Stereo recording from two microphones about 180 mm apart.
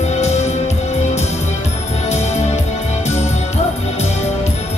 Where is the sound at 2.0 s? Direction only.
40° left (ahead or behind).